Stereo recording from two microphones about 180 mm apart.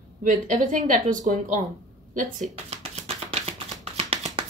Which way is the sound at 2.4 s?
40° right (ahead or behind).